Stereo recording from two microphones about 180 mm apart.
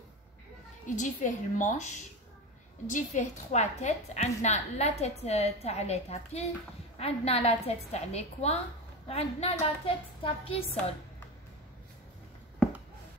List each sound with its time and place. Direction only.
0.8 s a woman's voice: 45° left (ahead or behind)
2.9 s a woman's voice: 40° left (ahead or behind)